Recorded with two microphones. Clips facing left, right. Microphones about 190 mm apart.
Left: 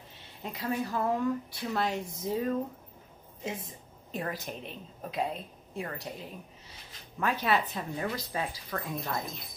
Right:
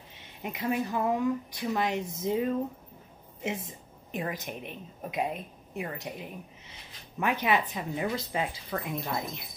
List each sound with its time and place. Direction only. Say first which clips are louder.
0.1 s speech: right 3 dB; 15° right (ahead or behind)
3.4 s a sound: right 3 dB; 25° right (ahead or behind)
4.2 s speech: right 1 dB; 15° right (ahead or behind)